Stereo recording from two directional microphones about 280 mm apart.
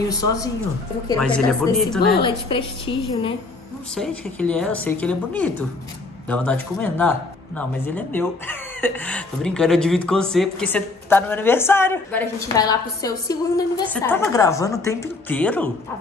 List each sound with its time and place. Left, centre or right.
0.1 s speech: centre
2.2 s speech: centre
3.9 s speech: centre